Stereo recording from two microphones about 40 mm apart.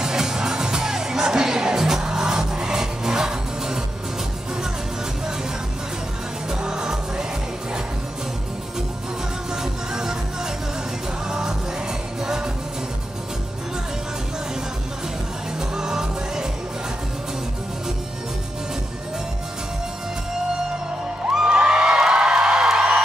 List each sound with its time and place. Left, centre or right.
0.0 s music: centre
6.5 s music: centre
9.6 s music: centre
15.7 s music: centre
21.5 s music: right